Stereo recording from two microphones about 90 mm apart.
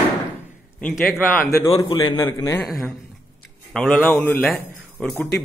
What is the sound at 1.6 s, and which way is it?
Speech, 55° left (ahead or behind).